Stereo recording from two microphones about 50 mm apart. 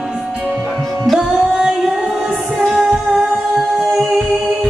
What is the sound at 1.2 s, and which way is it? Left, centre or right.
Singing, centre.